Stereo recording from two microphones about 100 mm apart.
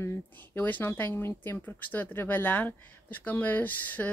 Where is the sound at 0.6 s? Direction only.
20° left (ahead or behind).